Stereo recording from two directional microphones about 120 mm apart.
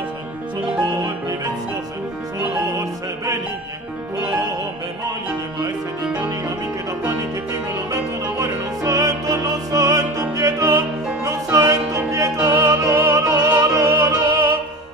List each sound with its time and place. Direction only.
7.9 s music: 25° right (ahead or behind)